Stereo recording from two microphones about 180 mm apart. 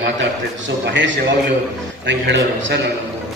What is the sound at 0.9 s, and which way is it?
Speech, 80° right.